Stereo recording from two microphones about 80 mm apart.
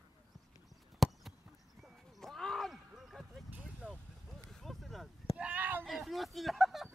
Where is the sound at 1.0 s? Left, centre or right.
Centre.